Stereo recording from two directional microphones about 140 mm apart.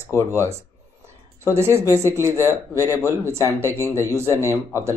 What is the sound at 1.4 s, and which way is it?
A man's voice, 20° right (ahead or behind).